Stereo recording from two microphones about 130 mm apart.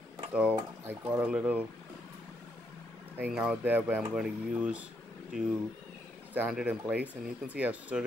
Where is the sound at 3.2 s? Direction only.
10° right (ahead or behind).